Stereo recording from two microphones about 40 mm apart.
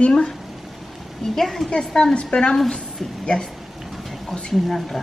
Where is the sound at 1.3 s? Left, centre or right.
Centre.